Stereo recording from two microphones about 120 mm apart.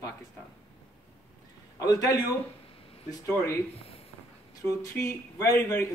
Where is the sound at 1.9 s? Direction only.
30° left (ahead or behind).